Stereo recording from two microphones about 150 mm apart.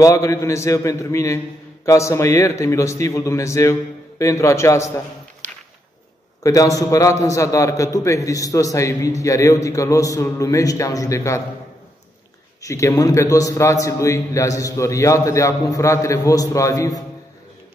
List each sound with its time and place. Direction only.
0.0 s a man's voice: 20° left (ahead or behind)
6.4 s a man's voice: 20° left (ahead or behind)
12.6 s a man's voice: 20° left (ahead or behind)